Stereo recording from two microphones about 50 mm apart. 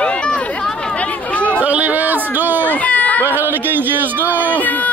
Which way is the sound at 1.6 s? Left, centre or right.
Right.